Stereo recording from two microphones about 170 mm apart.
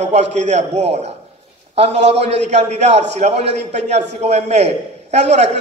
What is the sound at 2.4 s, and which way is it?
Speech, 40° right (ahead or behind).